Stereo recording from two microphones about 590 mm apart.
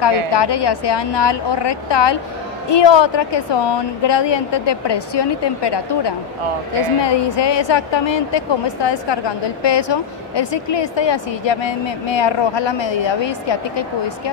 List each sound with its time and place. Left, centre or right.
0.3 s a woman's voice: left